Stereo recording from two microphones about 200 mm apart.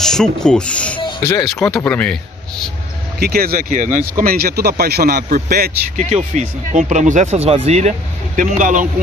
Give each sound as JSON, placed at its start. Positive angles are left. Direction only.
{"t": 0.0, "sound": "a man's voice", "side_deg": 5}
{"t": 3.2, "sound": "speech", "side_deg": -50}
{"t": 6.1, "sound": "speech", "side_deg": -35}